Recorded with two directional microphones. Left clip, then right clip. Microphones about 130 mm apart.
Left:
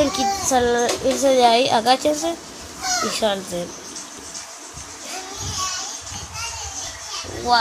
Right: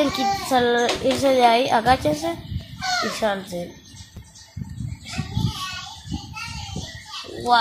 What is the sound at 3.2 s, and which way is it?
Speech, 25° left (ahead or behind).